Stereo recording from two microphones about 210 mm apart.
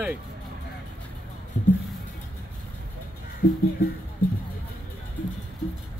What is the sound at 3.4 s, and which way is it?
Music, 40° left (ahead or behind).